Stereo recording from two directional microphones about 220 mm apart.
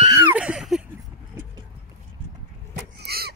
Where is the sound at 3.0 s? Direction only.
45° right (ahead or behind).